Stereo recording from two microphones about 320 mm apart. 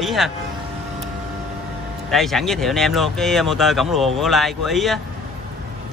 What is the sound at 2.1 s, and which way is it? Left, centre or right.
Speech, centre.